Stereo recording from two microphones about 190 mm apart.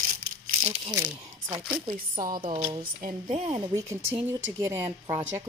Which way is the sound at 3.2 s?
25° right (ahead or behind).